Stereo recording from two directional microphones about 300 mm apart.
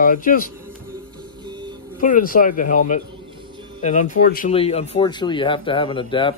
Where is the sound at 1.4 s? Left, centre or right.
Centre.